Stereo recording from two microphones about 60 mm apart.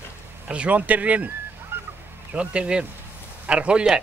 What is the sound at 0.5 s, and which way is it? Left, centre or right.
Speech, right.